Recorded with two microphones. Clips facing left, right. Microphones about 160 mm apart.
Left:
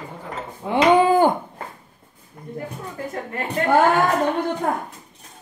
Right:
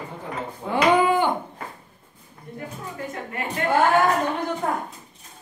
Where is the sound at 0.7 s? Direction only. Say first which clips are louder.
Left 3 dB; 30° left (ahead or behind).